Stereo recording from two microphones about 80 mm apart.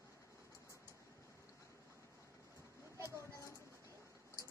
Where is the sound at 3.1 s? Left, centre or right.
Left.